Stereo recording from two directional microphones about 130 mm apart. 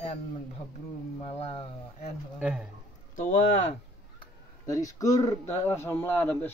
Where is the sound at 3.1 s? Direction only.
60° left (ahead or behind).